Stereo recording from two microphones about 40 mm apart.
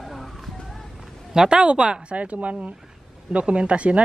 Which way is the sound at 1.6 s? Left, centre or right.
Right.